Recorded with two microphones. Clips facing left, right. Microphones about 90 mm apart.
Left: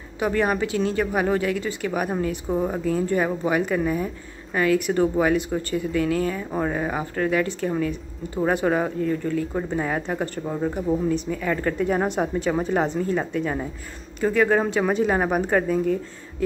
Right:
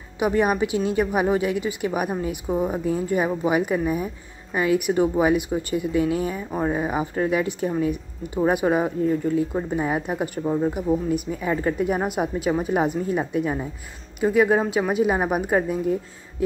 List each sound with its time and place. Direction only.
0.2 s a woman's voice: 15° right (ahead or behind)
11.2 s a woman's voice: 20° right (ahead or behind)